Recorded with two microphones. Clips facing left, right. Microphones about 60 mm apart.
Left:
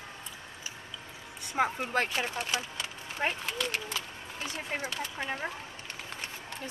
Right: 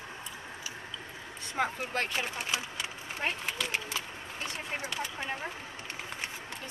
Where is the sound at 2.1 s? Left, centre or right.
Centre.